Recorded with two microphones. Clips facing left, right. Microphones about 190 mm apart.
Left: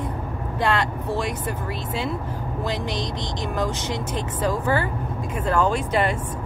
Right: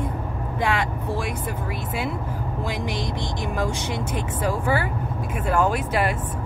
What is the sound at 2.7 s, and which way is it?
Speech, 10° right (ahead or behind).